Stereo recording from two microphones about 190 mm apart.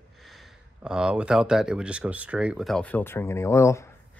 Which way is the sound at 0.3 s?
Centre (ahead or behind).